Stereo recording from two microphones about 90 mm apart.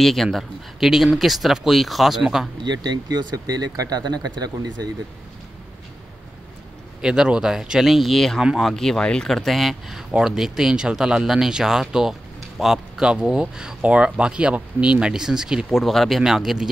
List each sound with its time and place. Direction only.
0.0 s speech: 5° left (ahead or behind)
2.6 s speech: 50° right (ahead or behind)
7.0 s speech: 10° right (ahead or behind)